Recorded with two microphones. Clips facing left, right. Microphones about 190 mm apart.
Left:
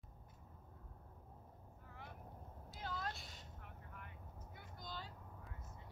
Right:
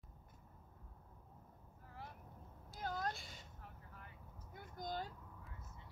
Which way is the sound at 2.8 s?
45° right (ahead or behind).